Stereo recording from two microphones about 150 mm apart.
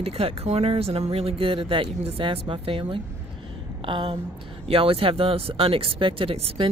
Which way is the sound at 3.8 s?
35° right (ahead or behind).